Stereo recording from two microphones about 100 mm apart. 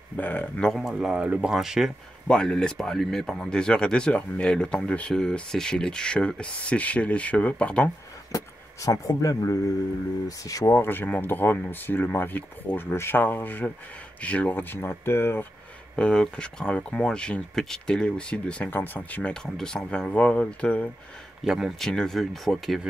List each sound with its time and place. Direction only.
0.2 s speech: 15° left (ahead or behind)
0.7 s speech: centre (ahead or behind)
2.2 s speech: 5° left (ahead or behind)
8.8 s speech: 35° left (ahead or behind)
16.0 s speech: 10° left (ahead or behind)
21.5 s speech: 5° right (ahead or behind)